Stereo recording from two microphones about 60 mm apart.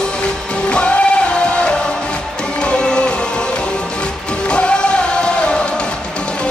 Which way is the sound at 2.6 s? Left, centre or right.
Centre.